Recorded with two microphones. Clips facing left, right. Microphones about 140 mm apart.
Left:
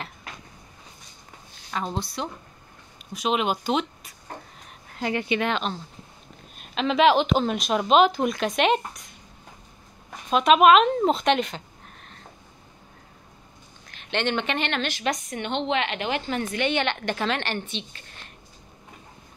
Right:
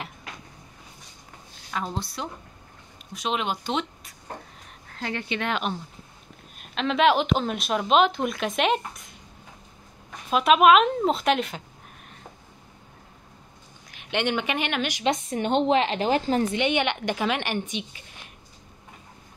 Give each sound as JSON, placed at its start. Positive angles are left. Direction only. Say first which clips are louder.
{"t": 1.7, "sound": "speech", "louder": "left 2 dB", "side_deg": 0}
{"t": 4.9, "sound": "speech", "louder": "left 5 dB", "side_deg": 10}
{"t": 5.5, "sound": "a woman's voice", "louder": "even", "side_deg": -10}
{"t": 6.6, "sound": "speech", "louder": "left 2 dB", "side_deg": 0}
{"t": 10.3, "sound": "speech", "louder": "left 1 dB", "side_deg": -5}
{"t": 13.8, "sound": "speech", "louder": "even", "side_deg": -10}
{"t": 15.2, "sound": "a woman's voice", "louder": "right 5 dB", "side_deg": -35}
{"t": 16.5, "sound": "a woman's voice", "louder": "right 1 dB", "side_deg": -15}